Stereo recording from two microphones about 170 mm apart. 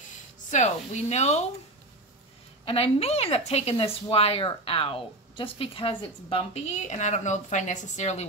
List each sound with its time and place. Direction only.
0.5 s a woman's voice: 45° left (ahead or behind)
2.6 s a woman's voice: 35° left (ahead or behind)